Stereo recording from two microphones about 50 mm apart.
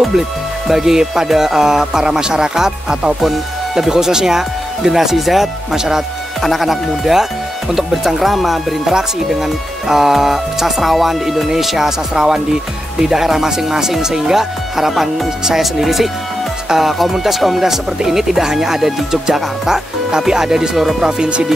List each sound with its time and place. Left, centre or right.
0.7 s speech: centre
3.3 s speech: centre
21.2 s speech: centre